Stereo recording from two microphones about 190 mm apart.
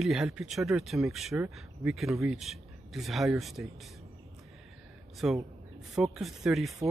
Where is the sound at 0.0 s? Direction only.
Centre (ahead or behind).